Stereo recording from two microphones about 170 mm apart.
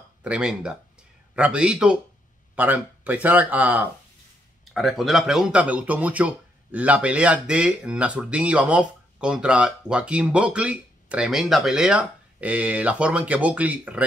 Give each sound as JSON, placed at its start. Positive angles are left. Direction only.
{"t": 0.2, "sound": "speech", "side_deg": -5}